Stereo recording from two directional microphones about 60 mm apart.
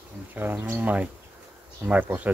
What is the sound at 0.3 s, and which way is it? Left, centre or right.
Speech, right.